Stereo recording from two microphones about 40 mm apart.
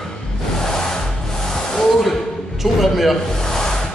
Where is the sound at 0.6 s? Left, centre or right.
Centre.